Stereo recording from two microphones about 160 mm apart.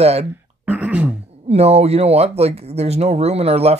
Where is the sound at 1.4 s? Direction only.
40° right (ahead or behind).